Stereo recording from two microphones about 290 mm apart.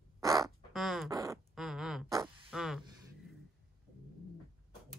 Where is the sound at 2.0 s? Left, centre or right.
Centre.